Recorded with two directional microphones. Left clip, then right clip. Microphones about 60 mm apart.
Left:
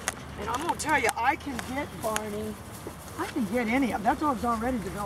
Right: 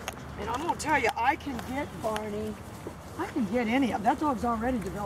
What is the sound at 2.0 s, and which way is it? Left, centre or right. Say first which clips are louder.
Speech: left 1 dB; left.